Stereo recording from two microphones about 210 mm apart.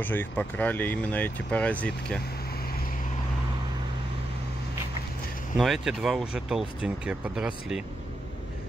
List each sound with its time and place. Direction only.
0.0 s speech: 10° left (ahead or behind)
5.6 s speech: centre (ahead or behind)